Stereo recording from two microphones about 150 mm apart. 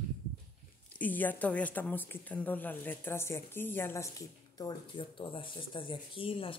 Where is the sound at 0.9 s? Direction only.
10° left (ahead or behind).